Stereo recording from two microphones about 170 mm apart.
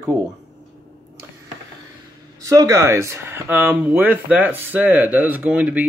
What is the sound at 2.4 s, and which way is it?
Speech, 20° right (ahead or behind).